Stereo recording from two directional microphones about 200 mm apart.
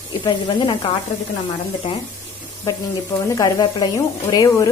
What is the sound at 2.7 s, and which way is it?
Speech, 20° left (ahead or behind).